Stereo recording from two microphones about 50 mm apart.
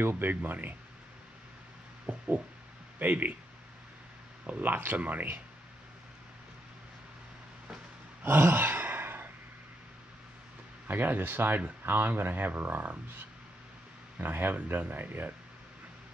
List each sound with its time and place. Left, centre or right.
0.0 s speech: right
2.0 s a sound: right
3.0 s speech: right
4.5 s speech: right
8.2 s sigh: right
10.9 s speech: right
14.2 s speech: right